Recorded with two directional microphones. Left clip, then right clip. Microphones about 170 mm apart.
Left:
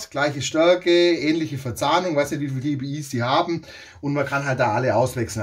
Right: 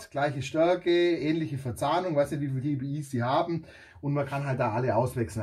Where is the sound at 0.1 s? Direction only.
25° left (ahead or behind).